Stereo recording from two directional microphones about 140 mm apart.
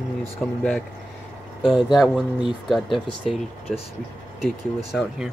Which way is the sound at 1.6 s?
Centre (ahead or behind).